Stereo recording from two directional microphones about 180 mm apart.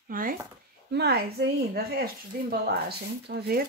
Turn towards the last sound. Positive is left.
turn(degrees=-60)  # may be behind; listen again after turning